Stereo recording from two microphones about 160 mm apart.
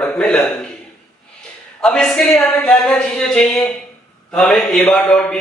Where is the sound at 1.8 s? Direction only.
5° left (ahead or behind).